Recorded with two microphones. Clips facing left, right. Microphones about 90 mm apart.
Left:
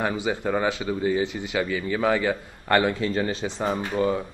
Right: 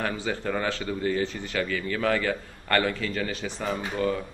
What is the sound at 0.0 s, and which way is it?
A man's voice, 15° left (ahead or behind).